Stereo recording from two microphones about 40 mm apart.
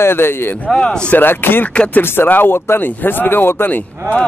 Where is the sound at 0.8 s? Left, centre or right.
Left.